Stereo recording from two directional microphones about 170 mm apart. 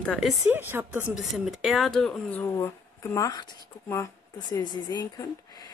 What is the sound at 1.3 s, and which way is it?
Speech, centre (ahead or behind).